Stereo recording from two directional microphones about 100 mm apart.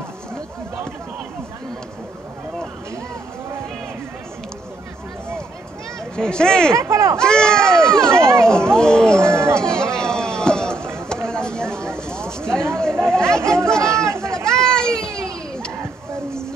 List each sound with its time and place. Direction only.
6.1 s speech: 10° left (ahead or behind)
6.7 s speech: 30° right (ahead or behind)
7.2 s speech: 10° left (ahead or behind)
9.3 s speech: 25° right (ahead or behind)
9.6 s a sound: 5° left (ahead or behind)
12.7 s chatter: 5° left (ahead or behind)
13.8 s chatter: 30° right (ahead or behind)
14.3 s children playing: 5° left (ahead or behind)